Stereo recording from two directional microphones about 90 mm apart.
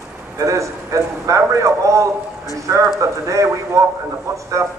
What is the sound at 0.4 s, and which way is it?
A man's voice, 35° right (ahead or behind).